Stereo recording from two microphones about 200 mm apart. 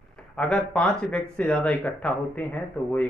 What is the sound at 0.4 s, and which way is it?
A man's voice, 5° left (ahead or behind).